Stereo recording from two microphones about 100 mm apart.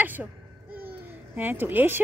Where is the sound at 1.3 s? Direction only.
20° right (ahead or behind).